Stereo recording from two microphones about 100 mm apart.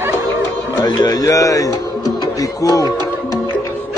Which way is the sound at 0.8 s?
45° left (ahead or behind).